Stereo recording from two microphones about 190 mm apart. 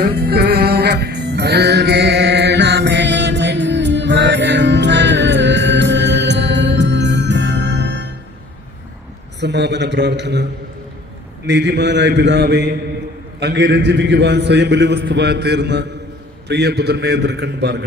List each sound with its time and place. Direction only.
0.2 s music: 55° right (ahead or behind)
9.4 s a man's voice: 65° right (ahead or behind)
11.4 s a man's voice: 65° right (ahead or behind)